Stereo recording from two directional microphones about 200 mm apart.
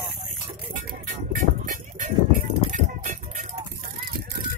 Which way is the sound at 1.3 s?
40° right (ahead or behind).